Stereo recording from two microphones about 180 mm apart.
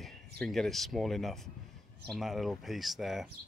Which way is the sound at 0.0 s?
Centre (ahead or behind).